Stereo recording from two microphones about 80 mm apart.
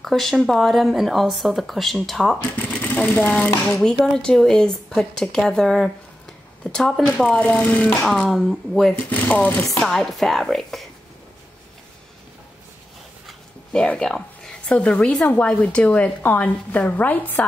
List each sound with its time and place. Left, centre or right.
0.0 s speech: centre
2.7 s speech: centre
3.7 s speech: centre
7.3 s speech: centre
8.0 s speech: centre
9.1 s speech: centre
9.7 s speech: centre
13.7 s speech: centre